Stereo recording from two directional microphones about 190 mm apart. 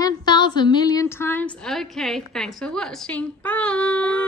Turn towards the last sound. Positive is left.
turn(degrees=5)  # may be behind; listen again after turning